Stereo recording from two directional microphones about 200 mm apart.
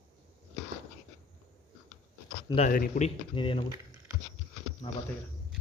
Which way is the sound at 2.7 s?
40° left (ahead or behind).